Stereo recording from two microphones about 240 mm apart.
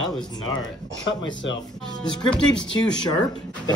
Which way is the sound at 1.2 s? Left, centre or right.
Left.